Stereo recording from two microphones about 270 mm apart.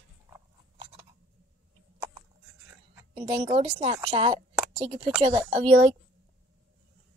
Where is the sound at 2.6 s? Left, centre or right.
Centre.